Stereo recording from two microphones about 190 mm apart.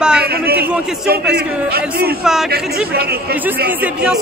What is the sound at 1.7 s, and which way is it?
Speech, 55° right (ahead or behind).